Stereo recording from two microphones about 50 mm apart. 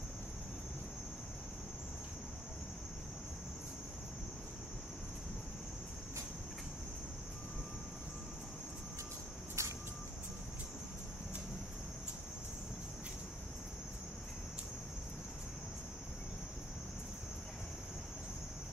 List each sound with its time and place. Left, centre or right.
9.6 s vehicle: right